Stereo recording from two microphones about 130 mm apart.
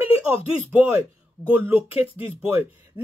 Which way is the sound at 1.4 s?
15° right (ahead or behind).